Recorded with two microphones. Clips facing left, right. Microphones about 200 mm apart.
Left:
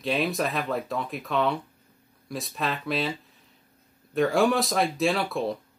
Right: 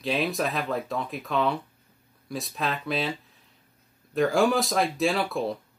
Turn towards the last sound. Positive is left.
turn(degrees=0)  # may be behind; listen again after turning